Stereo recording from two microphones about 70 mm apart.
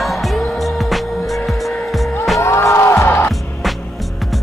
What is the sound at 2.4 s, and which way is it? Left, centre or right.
Music, left.